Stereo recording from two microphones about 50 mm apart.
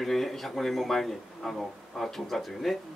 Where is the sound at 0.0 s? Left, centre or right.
Centre.